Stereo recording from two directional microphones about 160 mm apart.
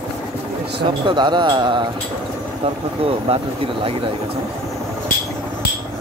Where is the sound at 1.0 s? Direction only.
30° right (ahead or behind).